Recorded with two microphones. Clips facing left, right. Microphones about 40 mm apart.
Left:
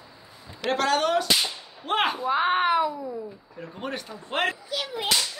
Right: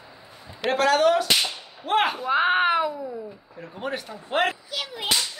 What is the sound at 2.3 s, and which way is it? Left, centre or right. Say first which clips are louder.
Speech: right 1 dB; right.